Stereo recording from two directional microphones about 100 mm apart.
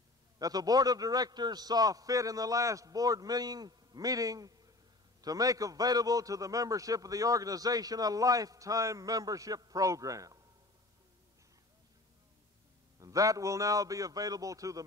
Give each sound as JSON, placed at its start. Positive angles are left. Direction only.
{"t": 0.4, "sound": "a man's voice", "side_deg": -40}
{"t": 13.0, "sound": "a man's voice", "side_deg": -35}